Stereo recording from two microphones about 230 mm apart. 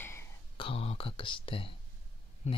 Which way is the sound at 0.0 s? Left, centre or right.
Centre.